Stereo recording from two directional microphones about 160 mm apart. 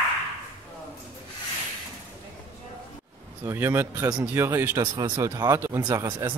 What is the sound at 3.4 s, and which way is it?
A man's voice, 15° right (ahead or behind).